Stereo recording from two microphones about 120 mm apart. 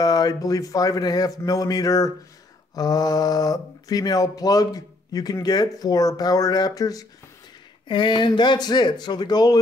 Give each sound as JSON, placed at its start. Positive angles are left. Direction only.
{"t": 0.0, "sound": "speech", "side_deg": 35}
{"t": 7.9, "sound": "speech", "side_deg": 40}